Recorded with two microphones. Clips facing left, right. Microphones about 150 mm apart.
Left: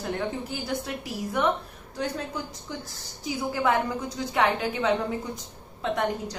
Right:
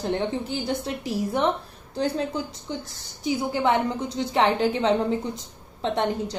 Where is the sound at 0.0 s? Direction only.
25° right (ahead or behind).